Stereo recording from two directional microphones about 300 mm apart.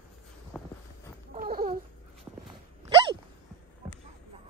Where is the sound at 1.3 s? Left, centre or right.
Right.